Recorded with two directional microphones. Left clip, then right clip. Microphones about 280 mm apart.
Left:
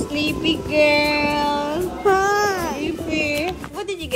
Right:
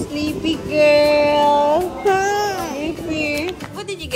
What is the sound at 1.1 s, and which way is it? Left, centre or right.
Music, left.